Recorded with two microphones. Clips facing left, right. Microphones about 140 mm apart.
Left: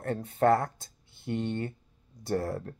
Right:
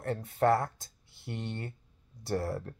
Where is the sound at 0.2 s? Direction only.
25° left (ahead or behind).